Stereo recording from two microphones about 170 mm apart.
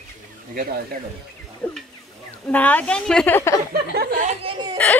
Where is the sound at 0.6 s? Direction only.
65° right (ahead or behind).